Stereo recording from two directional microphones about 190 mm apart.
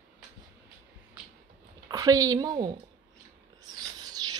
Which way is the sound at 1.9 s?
20° right (ahead or behind).